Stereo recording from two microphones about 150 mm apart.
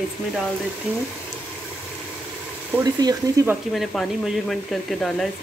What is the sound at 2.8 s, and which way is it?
Speech, 25° right (ahead or behind).